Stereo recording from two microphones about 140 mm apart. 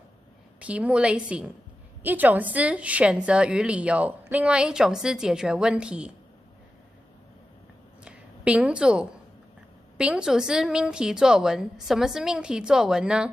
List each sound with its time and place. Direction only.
0.6 s a woman's voice: 10° right (ahead or behind)
8.0 s a sound: 10° right (ahead or behind)
9.9 s a woman's voice: 5° right (ahead or behind)